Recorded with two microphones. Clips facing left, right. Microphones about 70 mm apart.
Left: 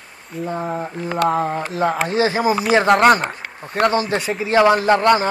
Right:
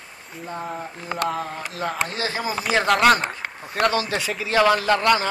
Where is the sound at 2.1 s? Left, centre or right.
Left.